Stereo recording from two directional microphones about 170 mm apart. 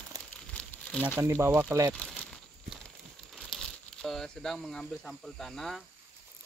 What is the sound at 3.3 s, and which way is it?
Speech, centre (ahead or behind).